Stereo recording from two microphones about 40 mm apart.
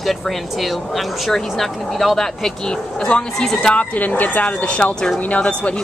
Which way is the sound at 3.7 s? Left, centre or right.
Left.